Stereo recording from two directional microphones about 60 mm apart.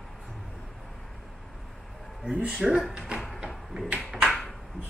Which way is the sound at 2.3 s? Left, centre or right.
Centre.